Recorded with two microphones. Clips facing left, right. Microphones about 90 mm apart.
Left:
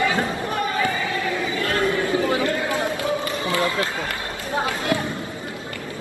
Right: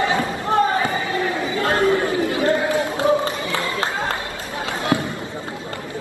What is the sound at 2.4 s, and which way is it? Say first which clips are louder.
Chatter: right 4 dB; 25° right (ahead or behind).